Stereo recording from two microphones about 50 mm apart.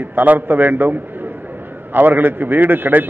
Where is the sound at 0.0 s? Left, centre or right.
Right.